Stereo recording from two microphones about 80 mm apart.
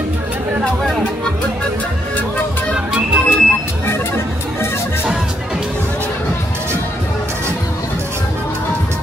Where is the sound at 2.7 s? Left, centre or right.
Centre.